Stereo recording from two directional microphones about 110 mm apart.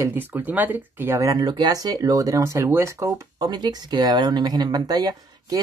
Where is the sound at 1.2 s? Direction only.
30° right (ahead or behind).